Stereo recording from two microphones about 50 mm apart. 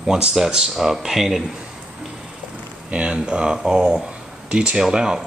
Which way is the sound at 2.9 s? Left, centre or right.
Centre.